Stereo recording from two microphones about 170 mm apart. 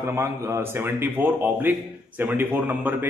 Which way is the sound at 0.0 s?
15° right (ahead or behind).